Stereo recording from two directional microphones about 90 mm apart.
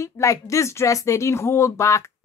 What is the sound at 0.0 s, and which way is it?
Speech, 35° left (ahead or behind).